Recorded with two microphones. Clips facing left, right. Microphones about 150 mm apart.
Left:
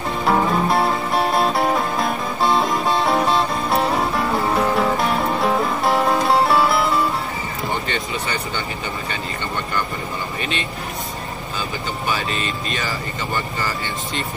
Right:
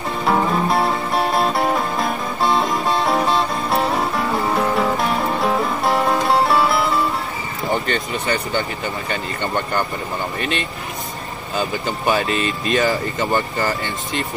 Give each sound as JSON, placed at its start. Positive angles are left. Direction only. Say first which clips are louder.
{"t": 0.2, "sound": "music", "louder": "even", "side_deg": 0}
{"t": 7.9, "sound": "speech", "louder": "right 3 dB", "side_deg": -45}
{"t": 12.1, "sound": "speech", "louder": "right 6 dB", "side_deg": -50}